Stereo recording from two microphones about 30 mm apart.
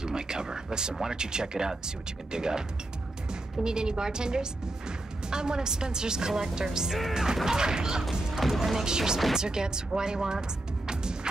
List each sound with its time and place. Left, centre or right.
0.0 s a woman's voice: right
3.6 s a woman's voice: right
8.0 s speech: centre
8.8 s a woman's voice: right